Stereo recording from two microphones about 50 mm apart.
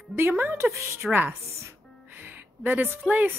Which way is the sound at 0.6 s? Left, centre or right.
Right.